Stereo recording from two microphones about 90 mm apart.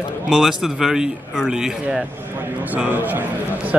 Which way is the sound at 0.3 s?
5° right (ahead or behind).